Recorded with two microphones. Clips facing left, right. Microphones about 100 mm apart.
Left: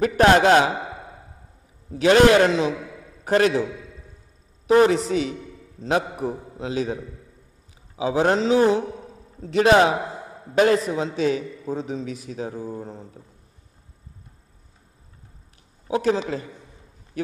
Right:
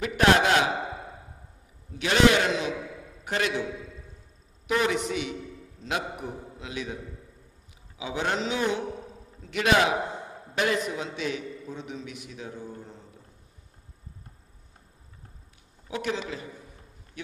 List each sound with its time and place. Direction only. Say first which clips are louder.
0.0 s a man's voice: left 6 dB; 35° left (ahead or behind)
1.9 s a man's voice: left 7 dB; 40° left (ahead or behind)
4.6 s a man's voice: left 9 dB; 35° left (ahead or behind)
15.9 s a man's voice: left 9 dB; 35° left (ahead or behind)